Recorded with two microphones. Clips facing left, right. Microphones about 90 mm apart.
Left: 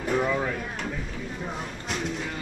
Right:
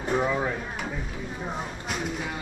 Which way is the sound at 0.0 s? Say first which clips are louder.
Even; 15° right (ahead or behind).